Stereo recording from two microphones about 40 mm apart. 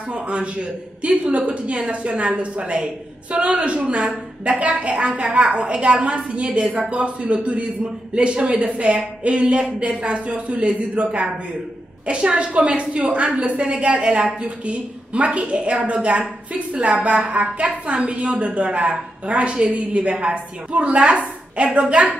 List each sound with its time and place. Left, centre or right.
0.1 s a woman's voice: right